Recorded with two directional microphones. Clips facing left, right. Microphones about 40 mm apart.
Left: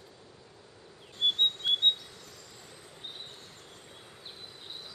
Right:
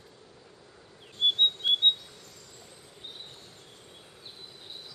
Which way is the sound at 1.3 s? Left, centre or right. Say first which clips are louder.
Right 3 dB; centre.